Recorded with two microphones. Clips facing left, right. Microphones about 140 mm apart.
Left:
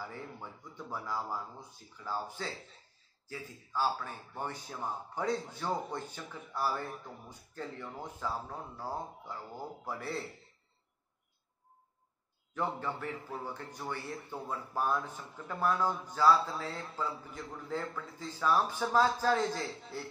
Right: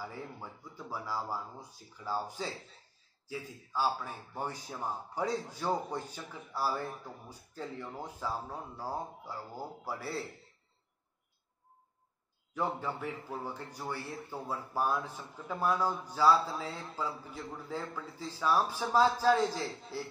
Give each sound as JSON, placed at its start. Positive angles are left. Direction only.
{"t": 0.0, "sound": "a man's voice", "side_deg": -10}
{"t": 12.5, "sound": "a man's voice", "side_deg": -10}